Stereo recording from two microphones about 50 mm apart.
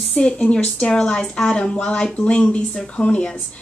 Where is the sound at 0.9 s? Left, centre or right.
Centre.